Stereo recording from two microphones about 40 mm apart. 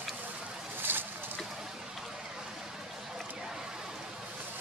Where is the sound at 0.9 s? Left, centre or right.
Right.